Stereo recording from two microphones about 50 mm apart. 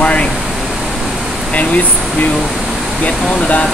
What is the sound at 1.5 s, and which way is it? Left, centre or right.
Speech, left.